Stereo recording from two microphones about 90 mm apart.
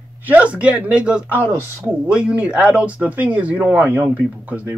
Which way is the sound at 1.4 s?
25° right (ahead or behind).